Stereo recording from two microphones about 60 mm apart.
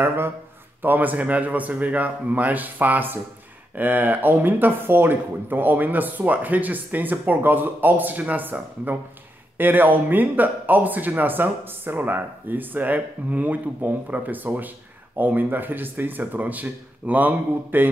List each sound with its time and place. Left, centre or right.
0.0 s a man's voice: right